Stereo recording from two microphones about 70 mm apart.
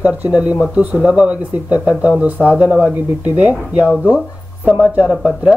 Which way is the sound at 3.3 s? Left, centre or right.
Centre.